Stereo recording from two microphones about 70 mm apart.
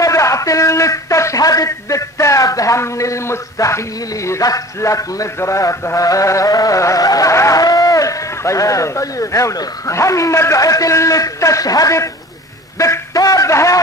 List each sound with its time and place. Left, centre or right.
0.0 s a man's voice: left